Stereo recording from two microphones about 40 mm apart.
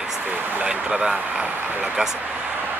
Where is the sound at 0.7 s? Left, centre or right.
Right.